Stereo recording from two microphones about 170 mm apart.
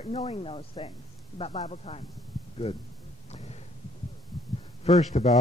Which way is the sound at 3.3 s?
40° left (ahead or behind).